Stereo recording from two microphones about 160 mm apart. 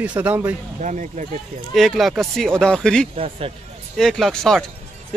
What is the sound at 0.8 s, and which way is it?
Speech, 50° right (ahead or behind).